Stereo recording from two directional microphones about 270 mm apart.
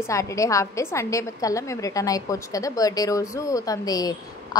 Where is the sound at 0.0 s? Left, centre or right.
Centre.